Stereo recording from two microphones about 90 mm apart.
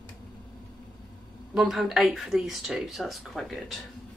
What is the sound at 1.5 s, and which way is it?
Speech, 5° right (ahead or behind).